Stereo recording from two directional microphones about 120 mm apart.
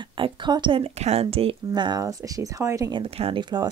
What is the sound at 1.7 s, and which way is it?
Speech, 35° right (ahead or behind).